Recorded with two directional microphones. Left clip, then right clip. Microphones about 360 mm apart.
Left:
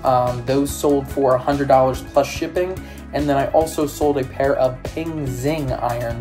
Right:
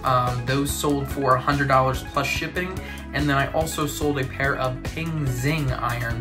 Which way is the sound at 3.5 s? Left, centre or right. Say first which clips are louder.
Left 8 dB; centre.